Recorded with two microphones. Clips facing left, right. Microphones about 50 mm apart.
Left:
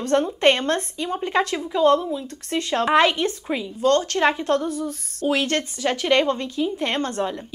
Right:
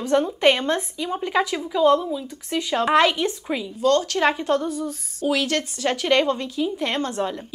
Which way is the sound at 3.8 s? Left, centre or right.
Left.